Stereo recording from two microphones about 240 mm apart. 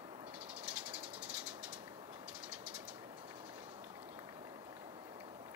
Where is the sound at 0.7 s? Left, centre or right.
Centre.